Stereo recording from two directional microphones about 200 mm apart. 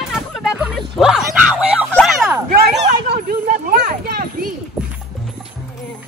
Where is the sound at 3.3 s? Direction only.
50° right (ahead or behind).